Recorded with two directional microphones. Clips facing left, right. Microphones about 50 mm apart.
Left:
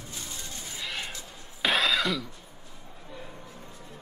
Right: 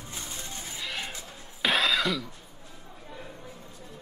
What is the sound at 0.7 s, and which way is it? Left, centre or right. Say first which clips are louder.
Music: even; centre.